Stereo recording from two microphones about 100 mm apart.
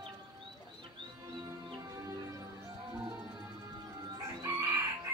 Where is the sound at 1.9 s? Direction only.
35° right (ahead or behind).